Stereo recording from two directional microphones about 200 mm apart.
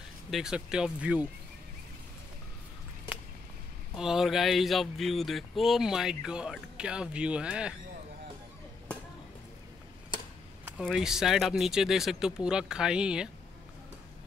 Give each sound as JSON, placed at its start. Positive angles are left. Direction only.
{"t": 0.3, "sound": "speech", "side_deg": -5}
{"t": 3.9, "sound": "speech", "side_deg": 0}
{"t": 10.8, "sound": "speech", "side_deg": -5}